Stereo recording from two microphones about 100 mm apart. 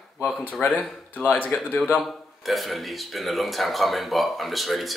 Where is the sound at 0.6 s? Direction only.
20° left (ahead or behind).